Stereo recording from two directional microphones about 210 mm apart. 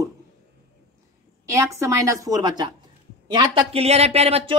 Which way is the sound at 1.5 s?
15° right (ahead or behind).